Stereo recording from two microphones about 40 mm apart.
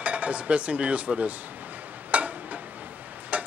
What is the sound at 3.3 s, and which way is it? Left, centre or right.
Tick-tock, right.